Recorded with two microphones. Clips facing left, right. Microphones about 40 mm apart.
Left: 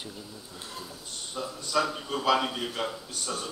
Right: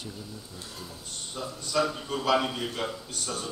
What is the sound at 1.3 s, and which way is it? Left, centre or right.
A man's voice, centre.